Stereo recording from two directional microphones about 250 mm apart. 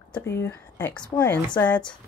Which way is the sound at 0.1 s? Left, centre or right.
Centre.